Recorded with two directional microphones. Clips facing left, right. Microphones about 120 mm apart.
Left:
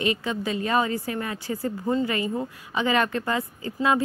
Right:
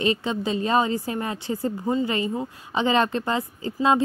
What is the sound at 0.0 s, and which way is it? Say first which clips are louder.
A woman's voice: right 2 dB; 30° right (ahead or behind).